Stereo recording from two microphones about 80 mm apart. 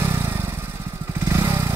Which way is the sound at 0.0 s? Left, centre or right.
Right.